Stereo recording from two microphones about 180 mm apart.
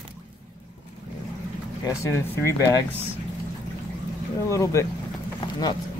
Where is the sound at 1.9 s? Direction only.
15° left (ahead or behind).